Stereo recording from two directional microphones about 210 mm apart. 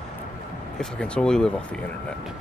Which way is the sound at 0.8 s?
5° left (ahead or behind).